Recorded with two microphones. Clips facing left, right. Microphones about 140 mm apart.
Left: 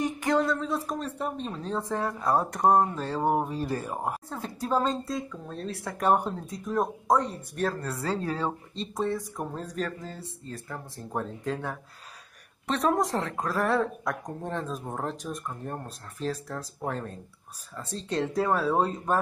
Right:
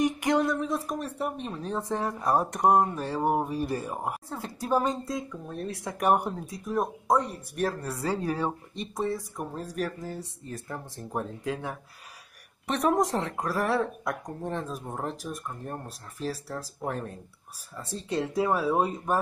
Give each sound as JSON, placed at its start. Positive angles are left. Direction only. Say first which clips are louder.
{"t": 0.0, "sound": "a woman's voice", "louder": "right 1 dB", "side_deg": -15}
{"t": 8.9, "sound": "speech", "louder": "left 1 dB", "side_deg": 0}
{"t": 9.8, "sound": "a woman's voice", "louder": "right 3 dB", "side_deg": -10}